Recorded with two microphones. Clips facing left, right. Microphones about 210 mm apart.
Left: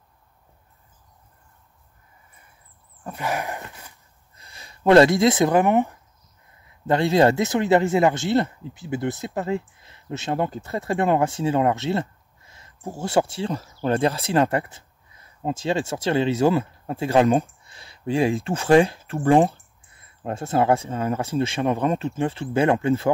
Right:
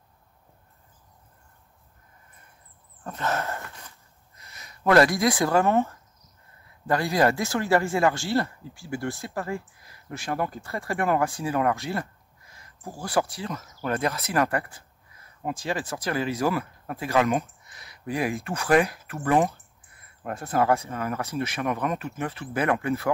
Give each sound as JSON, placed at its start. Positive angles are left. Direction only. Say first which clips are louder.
{"t": 3.0, "sound": "speech", "louder": "left 1 dB", "side_deg": 10}
{"t": 4.4, "sound": "speech", "louder": "left 5 dB", "side_deg": 30}